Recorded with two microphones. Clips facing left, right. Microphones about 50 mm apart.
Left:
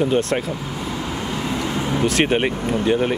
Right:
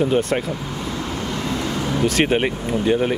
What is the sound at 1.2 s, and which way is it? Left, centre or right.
Vehicle, centre.